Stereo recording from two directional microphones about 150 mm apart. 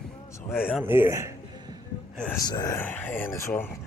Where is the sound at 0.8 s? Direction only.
15° right (ahead or behind).